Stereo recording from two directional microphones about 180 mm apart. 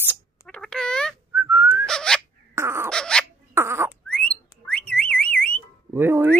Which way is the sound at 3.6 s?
15° right (ahead or behind).